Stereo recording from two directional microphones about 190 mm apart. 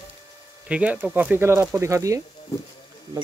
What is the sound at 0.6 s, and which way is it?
Speech, 5° right (ahead or behind).